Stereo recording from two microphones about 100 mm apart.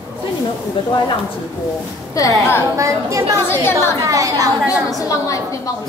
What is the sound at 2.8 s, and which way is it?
Speech, 30° right (ahead or behind).